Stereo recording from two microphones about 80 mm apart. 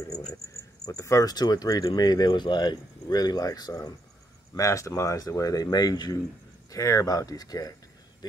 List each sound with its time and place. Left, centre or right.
0.8 s speech: left
1.3 s speech: left
4.6 s speech: left
6.7 s speech: left